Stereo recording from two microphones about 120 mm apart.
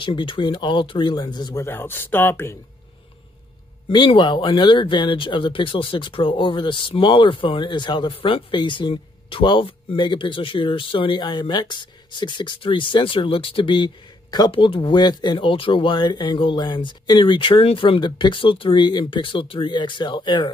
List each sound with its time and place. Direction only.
0.0 s speech: 45° left (ahead or behind)
1.6 s speech: 20° left (ahead or behind)
3.9 s speech: 40° left (ahead or behind)